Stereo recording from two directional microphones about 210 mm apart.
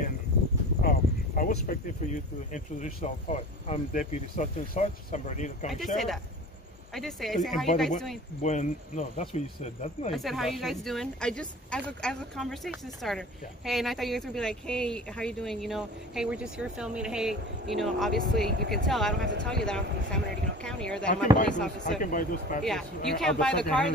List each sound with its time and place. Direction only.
0.8 s a sound: 40° left (ahead or behind)
2.5 s speech: 35° left (ahead or behind)
5.9 s speech: centre (ahead or behind)
8.4 s speech: 35° left (ahead or behind)
10.1 s speech: centre (ahead or behind)
22.0 s speech: 40° left (ahead or behind)
22.6 s speech: centre (ahead or behind)